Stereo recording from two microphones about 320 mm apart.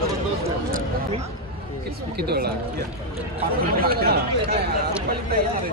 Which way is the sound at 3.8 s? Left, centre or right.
Right.